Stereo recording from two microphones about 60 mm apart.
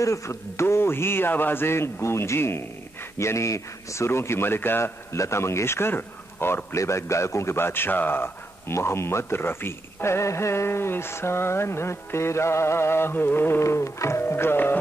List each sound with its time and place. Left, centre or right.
0.0 s speech: left
5.1 s speech: left
6.8 s speech: left
8.7 s speech: left
14.2 s speech: left